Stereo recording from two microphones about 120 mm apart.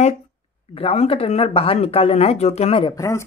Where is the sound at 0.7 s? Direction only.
55° left (ahead or behind).